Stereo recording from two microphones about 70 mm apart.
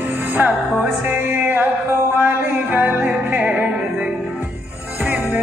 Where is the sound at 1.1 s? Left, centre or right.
Right.